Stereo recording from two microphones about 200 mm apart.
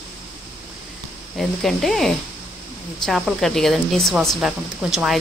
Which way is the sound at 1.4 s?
Centre (ahead or behind).